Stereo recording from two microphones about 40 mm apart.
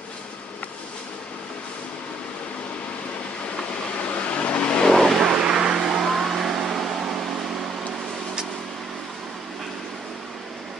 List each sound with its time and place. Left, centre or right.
4.0 s vehicle: left
4.9 s vehicle: centre
5.2 s vehicle: centre